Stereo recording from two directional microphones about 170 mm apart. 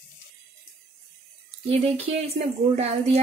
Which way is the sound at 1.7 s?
35° right (ahead or behind).